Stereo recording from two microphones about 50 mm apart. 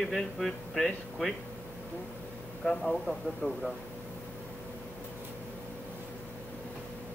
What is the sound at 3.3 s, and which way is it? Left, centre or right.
Speech, left.